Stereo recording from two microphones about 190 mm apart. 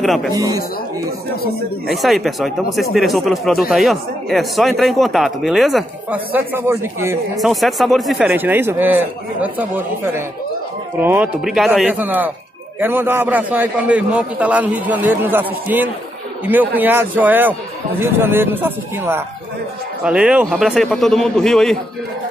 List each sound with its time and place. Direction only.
0.0 s speech: centre (ahead or behind)
0.4 s a man's voice: 20° right (ahead or behind)
1.9 s speech: centre (ahead or behind)
7.3 s a man's voice: centre (ahead or behind)